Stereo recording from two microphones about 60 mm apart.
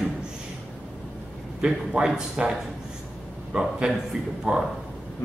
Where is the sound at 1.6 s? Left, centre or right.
Centre.